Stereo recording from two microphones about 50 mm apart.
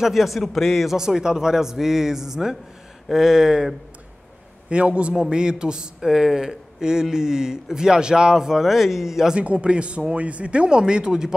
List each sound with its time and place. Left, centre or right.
0.0 s a man's voice: centre
0.9 s speech: centre
4.6 s speech: right; by 9.3 s centre
9.3 s speech: right